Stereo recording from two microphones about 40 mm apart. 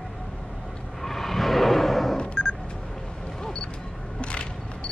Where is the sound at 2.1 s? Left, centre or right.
Centre.